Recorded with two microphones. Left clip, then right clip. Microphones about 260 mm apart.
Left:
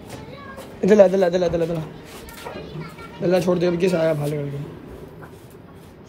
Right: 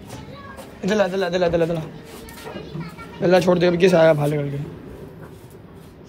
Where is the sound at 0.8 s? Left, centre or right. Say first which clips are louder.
Left 6 dB; centre.